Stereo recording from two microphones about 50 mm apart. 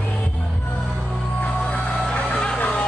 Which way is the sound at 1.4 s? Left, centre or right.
Left.